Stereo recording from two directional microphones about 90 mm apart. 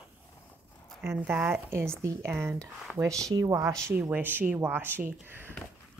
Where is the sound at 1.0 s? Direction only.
25° right (ahead or behind).